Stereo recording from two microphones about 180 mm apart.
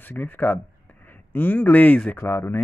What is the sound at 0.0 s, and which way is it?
A man's voice, 10° left (ahead or behind).